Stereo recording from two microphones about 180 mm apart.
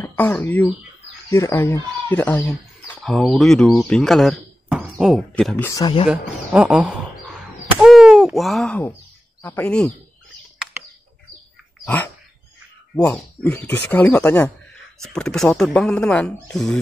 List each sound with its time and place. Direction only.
0.0 s speech: 10° left (ahead or behind)
5.7 s speech: 20° left (ahead or behind)
6.0 s speech: 5° right (ahead or behind)
7.8 s a sound: 5° right (ahead or behind)
9.4 s speech: 10° left (ahead or behind)
10.8 s bird: 10° right (ahead or behind)
11.8 s dog: 10° left (ahead or behind)
12.9 s speech: 10° left (ahead or behind)